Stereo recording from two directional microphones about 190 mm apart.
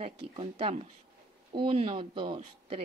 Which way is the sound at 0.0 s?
30° right (ahead or behind).